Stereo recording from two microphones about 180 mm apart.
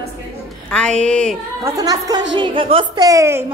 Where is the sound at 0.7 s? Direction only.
5° left (ahead or behind).